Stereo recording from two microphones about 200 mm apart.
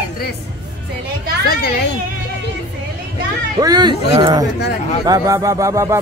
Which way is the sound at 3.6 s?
20° right (ahead or behind).